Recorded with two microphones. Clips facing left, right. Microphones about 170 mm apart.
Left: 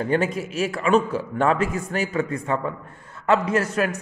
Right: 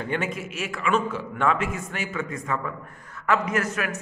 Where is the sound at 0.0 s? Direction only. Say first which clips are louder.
Left 6 dB; 35° left (ahead or behind).